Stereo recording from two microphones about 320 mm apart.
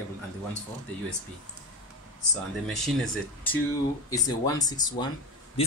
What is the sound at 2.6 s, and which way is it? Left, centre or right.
Speech, centre.